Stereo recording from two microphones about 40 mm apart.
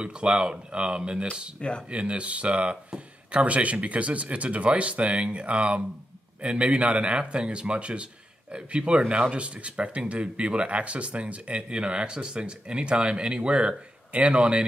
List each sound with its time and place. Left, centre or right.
0.0 s speech: right
1.6 s speech: left
1.9 s speech: right